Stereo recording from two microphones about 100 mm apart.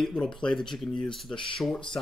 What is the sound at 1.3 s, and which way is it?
Speech, 60° left (ahead or behind).